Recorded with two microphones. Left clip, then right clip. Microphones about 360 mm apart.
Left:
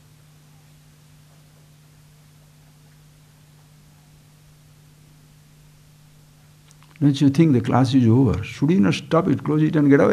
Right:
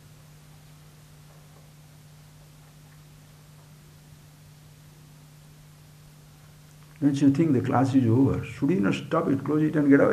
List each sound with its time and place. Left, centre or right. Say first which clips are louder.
7.0 s speech: left 4 dB; left